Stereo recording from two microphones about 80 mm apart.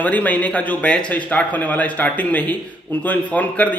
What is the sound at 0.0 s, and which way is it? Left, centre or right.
A man's voice, centre.